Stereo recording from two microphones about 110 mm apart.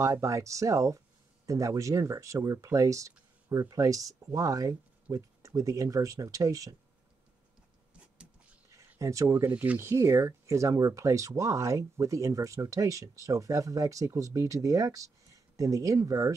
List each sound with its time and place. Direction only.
0.0 s speech: 30° right (ahead or behind)
8.7 s a sound: 30° right (ahead or behind)
9.5 s speech: 15° right (ahead or behind)